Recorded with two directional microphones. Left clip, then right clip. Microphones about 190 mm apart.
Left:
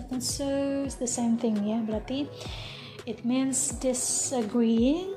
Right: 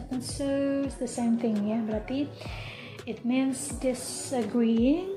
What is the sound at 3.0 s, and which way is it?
A woman's voice, 40° left (ahead or behind).